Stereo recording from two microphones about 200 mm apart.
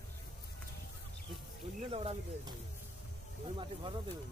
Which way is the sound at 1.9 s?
30° right (ahead or behind).